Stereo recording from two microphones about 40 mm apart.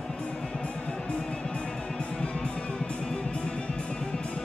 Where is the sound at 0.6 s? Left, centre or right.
Left.